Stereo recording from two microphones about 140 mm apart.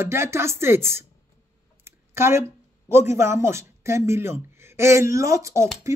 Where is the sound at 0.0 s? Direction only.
20° right (ahead or behind).